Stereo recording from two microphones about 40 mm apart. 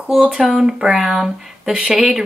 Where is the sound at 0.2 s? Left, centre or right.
Centre.